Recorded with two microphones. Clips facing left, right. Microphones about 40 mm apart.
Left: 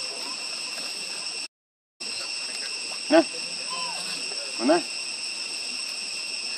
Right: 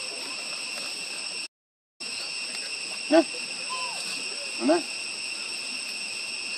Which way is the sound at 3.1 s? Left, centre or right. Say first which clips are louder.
Left 1 dB; left.